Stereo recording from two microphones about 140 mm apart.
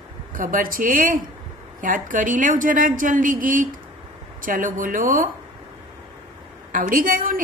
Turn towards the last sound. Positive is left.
turn(degrees=-80)